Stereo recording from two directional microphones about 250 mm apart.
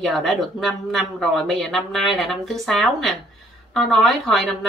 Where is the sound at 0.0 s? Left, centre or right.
Centre.